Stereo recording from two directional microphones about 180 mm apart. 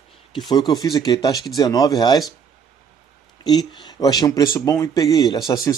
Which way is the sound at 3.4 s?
25° left (ahead or behind).